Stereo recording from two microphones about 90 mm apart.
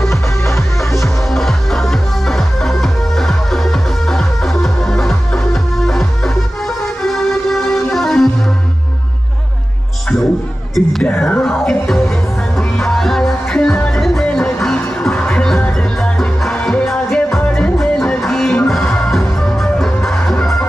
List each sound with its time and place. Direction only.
0.0 s music: 30° left (ahead or behind)
1.3 s music: 5° left (ahead or behind)
10.7 s music: centre (ahead or behind)
11.1 s music: 15° left (ahead or behind)